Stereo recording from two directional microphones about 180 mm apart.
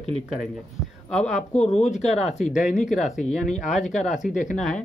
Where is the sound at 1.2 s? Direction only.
40° left (ahead or behind).